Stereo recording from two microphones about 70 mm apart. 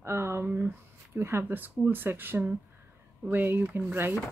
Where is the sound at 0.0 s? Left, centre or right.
Right.